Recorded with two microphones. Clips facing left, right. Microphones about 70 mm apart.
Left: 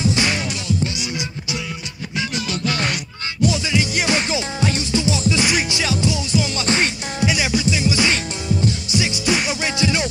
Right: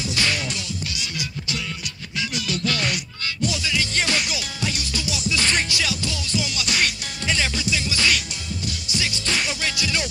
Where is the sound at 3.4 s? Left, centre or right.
Centre.